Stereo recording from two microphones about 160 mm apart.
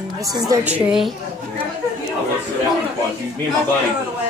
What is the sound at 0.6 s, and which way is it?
Speech, 5° right (ahead or behind).